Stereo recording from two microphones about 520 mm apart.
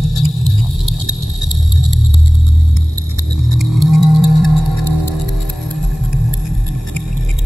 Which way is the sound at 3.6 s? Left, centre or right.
Right.